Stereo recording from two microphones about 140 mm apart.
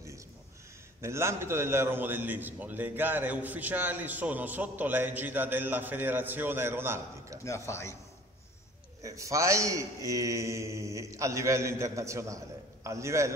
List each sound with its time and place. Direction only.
1.0 s a man's voice: 20° right (ahead or behind)
7.4 s speech: 20° left (ahead or behind)
9.0 s a man's voice: 25° right (ahead or behind)